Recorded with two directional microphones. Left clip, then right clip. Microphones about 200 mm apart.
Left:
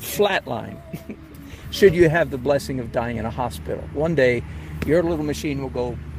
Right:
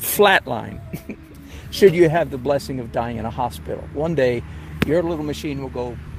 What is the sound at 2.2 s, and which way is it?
Speech, centre (ahead or behind).